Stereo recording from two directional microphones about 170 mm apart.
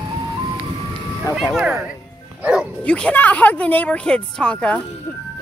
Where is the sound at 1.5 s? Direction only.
5° right (ahead or behind).